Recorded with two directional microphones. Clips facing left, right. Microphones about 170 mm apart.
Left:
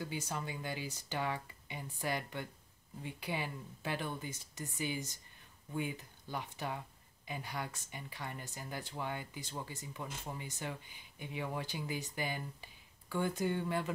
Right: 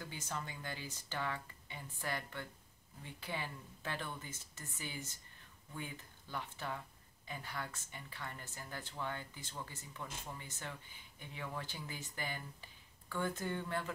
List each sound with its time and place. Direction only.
0.0 s speech: 10° left (ahead or behind)